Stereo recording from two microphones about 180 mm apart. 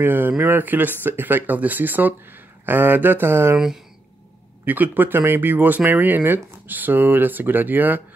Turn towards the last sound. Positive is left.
turn(degrees=-10)  # may be behind; listen again after turning